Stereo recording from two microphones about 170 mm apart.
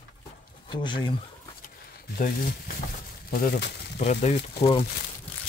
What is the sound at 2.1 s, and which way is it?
Speech, 55° left (ahead or behind).